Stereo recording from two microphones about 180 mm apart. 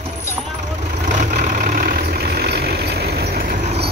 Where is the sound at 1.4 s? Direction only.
45° right (ahead or behind).